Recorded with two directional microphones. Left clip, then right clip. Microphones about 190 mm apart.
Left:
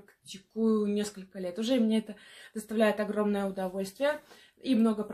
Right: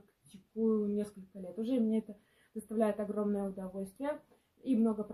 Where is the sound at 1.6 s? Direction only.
15° left (ahead or behind).